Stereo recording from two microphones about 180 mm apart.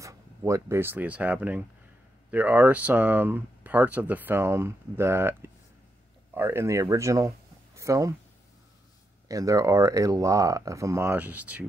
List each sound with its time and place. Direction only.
0.0 s speech: 15° right (ahead or behind)
9.3 s speech: 20° right (ahead or behind)